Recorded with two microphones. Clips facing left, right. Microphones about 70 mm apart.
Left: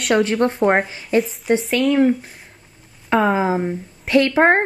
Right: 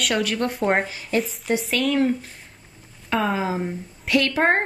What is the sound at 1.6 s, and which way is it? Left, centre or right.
Speech, centre.